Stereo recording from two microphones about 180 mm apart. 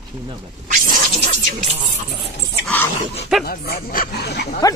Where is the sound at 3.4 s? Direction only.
55° left (ahead or behind).